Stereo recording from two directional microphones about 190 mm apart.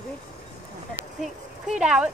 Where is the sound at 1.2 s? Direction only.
5° right (ahead or behind).